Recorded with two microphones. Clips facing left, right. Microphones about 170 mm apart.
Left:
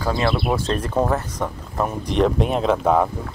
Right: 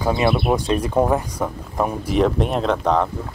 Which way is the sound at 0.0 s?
20° right (ahead or behind).